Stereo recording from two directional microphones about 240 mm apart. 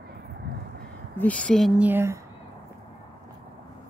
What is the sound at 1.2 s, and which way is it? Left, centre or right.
Speech, centre.